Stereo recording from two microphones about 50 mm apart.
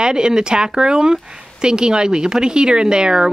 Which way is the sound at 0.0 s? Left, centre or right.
Centre.